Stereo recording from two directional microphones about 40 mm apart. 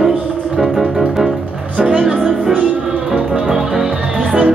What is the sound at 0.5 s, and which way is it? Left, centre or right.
Music, centre.